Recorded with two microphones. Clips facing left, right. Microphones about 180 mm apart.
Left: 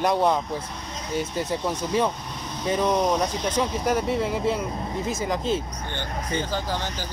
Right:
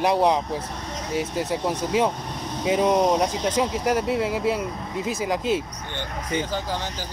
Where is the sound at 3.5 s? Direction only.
5° right (ahead or behind).